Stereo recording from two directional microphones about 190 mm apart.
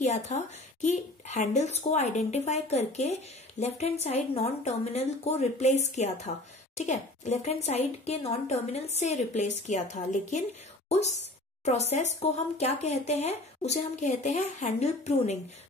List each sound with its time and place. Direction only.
0.0 s speech: 40° left (ahead or behind)